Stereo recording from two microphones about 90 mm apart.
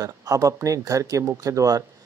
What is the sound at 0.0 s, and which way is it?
Speech, 40° right (ahead or behind).